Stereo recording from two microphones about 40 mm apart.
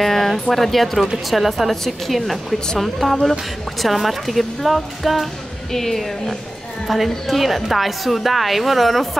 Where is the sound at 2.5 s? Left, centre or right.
Centre.